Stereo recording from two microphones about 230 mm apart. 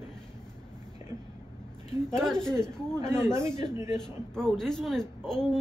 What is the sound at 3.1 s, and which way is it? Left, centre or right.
Speech, centre.